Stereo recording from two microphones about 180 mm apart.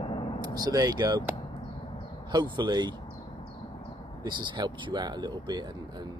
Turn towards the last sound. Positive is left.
turn(degrees=-25)  # may be behind; listen again after turning